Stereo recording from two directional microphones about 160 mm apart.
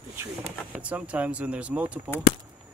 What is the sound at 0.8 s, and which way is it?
Speech, 10° right (ahead or behind).